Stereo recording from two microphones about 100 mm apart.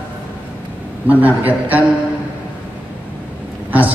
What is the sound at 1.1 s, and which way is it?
Speech, 15° right (ahead or behind).